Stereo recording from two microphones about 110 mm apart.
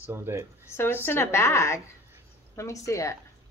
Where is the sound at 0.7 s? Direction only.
20° left (ahead or behind).